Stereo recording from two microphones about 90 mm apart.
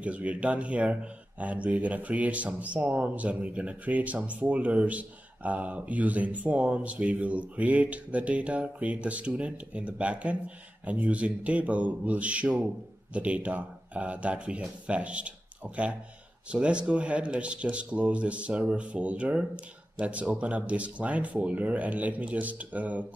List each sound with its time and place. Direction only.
0.0 s speech: 15° right (ahead or behind)